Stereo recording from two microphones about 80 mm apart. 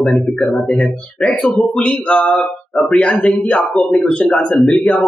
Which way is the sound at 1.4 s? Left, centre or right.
Centre.